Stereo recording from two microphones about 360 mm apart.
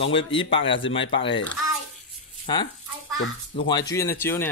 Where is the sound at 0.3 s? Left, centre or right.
Centre.